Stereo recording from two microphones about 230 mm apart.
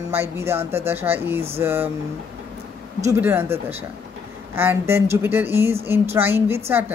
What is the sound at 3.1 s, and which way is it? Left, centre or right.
Speech, centre.